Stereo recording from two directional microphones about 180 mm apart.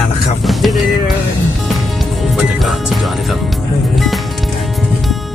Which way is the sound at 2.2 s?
5° right (ahead or behind).